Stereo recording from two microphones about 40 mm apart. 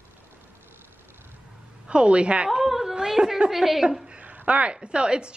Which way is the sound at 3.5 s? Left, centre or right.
Centre.